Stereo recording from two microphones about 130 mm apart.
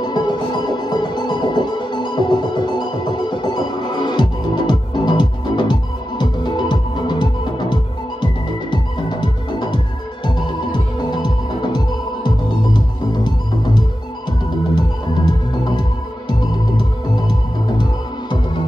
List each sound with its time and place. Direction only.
0.0 s music: 35° left (ahead or behind)
14.8 s music: 35° left (ahead or behind)